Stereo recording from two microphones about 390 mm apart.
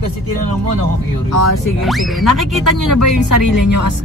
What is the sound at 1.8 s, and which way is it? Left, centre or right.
Speech, centre.